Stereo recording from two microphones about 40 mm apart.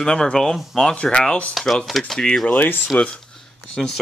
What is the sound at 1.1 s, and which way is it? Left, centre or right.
Speech, left.